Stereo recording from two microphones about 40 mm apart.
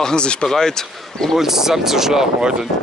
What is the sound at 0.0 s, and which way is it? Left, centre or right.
Speech, left.